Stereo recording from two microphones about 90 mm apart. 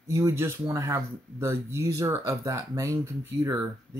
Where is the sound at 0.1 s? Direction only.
35° right (ahead or behind).